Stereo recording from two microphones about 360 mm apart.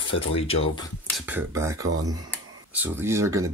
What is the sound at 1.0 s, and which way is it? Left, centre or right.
Speech, centre.